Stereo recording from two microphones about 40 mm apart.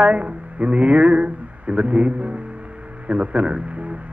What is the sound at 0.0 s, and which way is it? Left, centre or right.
A man's voice, right.